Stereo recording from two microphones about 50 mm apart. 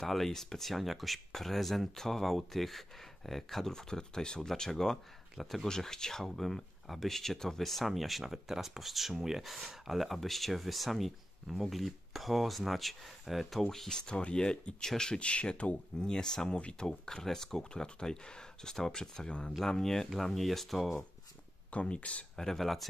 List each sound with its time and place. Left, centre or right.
0.0 s speech: centre
14.1 s speech: left; by 21.0 s centre
21.6 s speech: left
22.3 s speech: centre